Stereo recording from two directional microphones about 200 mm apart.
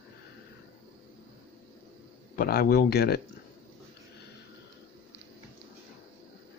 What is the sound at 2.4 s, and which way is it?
Speech, 50° left (ahead or behind).